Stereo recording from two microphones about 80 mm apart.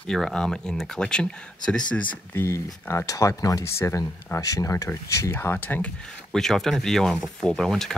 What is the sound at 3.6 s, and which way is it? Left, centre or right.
Speech, left.